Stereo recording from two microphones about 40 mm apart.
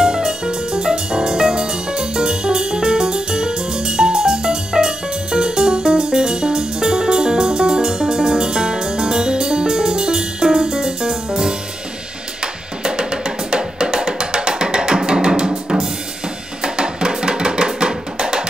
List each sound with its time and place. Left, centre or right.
0.0 s music: centre
12.8 s music: centre
16.6 s music: centre